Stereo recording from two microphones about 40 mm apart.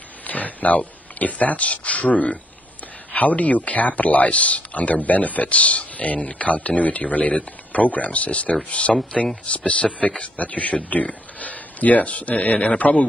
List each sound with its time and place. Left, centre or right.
0.3 s speech: left
9.1 s speech: centre
9.5 s a man's voice: left
10.3 s speech: left